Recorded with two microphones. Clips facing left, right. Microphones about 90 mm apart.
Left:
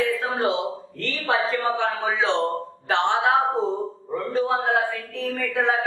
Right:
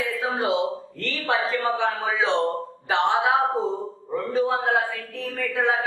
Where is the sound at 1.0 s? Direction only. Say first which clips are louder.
Left 1 dB; centre (ahead or behind).